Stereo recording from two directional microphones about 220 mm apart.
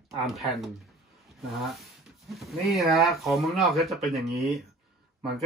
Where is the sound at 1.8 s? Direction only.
Centre (ahead or behind).